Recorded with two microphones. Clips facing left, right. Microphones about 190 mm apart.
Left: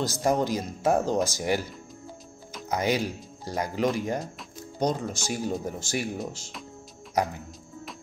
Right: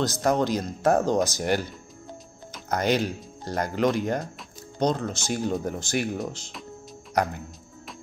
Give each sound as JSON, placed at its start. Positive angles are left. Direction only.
{"t": 0.2, "sound": "speech", "side_deg": 5}
{"t": 7.2, "sound": "music", "side_deg": 0}